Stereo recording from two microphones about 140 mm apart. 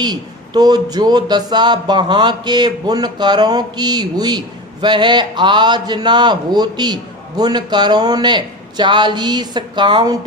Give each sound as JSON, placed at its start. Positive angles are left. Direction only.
{"t": 0.0, "sound": "a man's voice", "side_deg": -30}